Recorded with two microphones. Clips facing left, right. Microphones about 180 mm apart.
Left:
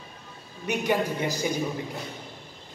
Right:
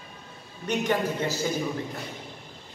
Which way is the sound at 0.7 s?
10° left (ahead or behind).